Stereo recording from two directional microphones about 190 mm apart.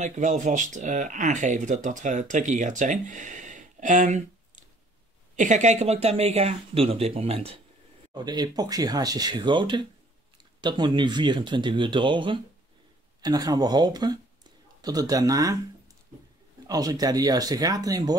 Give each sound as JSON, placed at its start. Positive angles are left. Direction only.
{"t": 0.0, "sound": "speech", "side_deg": -40}
{"t": 5.3, "sound": "speech", "side_deg": -40}
{"t": 8.1, "sound": "speech", "side_deg": -20}
{"t": 16.6, "sound": "speech", "side_deg": -20}